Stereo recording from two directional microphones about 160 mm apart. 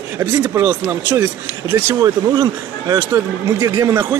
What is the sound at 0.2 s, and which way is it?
Speech, 15° right (ahead or behind).